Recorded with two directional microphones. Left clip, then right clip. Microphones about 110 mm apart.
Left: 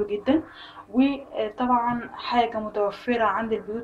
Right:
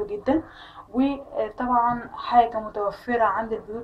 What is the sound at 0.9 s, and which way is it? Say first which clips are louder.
A woman's voice: left 1 dB; 20° left (ahead or behind).